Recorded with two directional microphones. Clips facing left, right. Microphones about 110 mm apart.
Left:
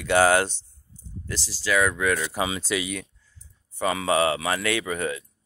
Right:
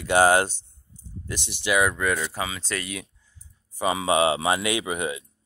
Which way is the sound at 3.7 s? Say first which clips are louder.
Right 1 dB; 15° right (ahead or behind).